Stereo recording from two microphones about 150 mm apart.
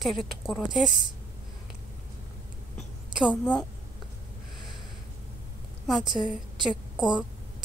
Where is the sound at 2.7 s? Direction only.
5° right (ahead or behind).